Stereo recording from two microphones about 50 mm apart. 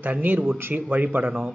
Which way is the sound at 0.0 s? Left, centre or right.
Right.